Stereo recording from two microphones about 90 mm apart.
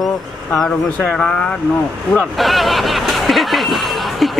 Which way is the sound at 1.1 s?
10° left (ahead or behind).